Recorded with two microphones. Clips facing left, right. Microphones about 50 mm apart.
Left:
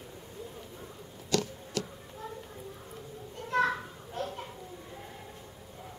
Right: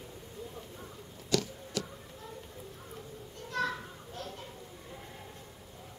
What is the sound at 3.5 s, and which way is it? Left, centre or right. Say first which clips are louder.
Children playing: left 6 dB; left.